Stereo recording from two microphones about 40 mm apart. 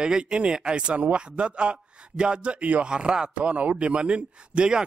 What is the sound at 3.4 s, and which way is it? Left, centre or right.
A man's voice, right.